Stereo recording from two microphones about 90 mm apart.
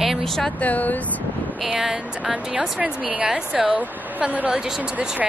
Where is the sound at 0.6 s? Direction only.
15° left (ahead or behind).